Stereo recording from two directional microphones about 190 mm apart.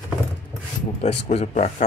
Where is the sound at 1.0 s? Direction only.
35° left (ahead or behind).